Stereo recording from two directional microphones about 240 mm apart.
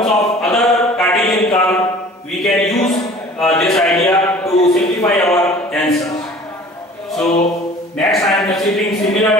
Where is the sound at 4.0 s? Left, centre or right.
Centre.